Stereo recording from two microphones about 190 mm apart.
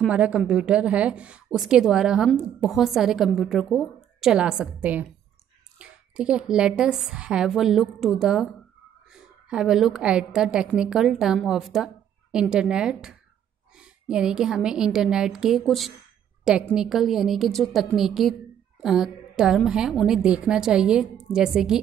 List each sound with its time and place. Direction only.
0.0 s a woman's voice: 5° right (ahead or behind)